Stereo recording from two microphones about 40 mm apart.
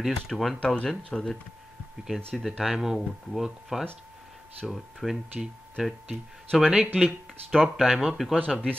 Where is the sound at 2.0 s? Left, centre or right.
Centre.